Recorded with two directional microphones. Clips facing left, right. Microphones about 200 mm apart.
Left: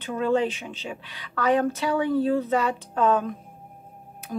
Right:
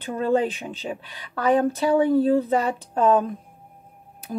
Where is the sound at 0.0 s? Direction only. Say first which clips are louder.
Right 1 dB; 40° right (ahead or behind).